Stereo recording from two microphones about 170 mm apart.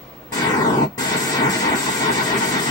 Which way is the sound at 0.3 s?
20° left (ahead or behind).